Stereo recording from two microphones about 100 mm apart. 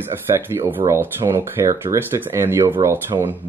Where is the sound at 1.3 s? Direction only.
25° right (ahead or behind).